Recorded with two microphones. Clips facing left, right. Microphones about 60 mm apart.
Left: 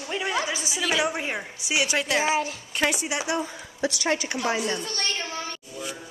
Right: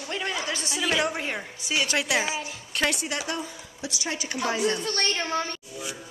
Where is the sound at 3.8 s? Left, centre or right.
Left.